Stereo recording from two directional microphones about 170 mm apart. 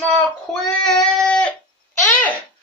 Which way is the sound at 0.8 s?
5° left (ahead or behind).